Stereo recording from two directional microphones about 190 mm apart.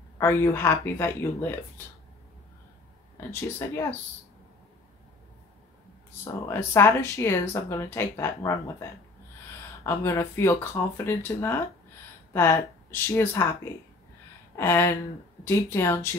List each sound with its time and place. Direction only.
0.2 s speech: 10° left (ahead or behind)
3.2 s speech: 10° left (ahead or behind)
6.4 s speech: 10° left (ahead or behind)
9.8 s speech: 15° left (ahead or behind)